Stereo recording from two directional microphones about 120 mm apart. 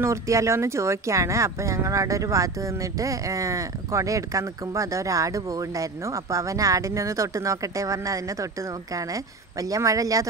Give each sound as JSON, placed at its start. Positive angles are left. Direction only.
{"t": 0.0, "sound": "speech", "side_deg": -25}